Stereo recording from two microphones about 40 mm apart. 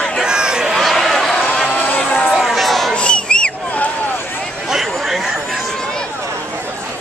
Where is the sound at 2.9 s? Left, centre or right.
Left.